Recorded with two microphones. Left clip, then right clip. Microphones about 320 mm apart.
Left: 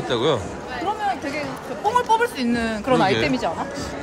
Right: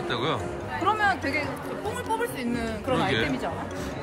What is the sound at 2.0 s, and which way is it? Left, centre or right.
Speech, left.